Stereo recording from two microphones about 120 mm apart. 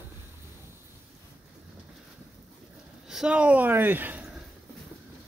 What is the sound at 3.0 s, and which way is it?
Speech, 5° right (ahead or behind).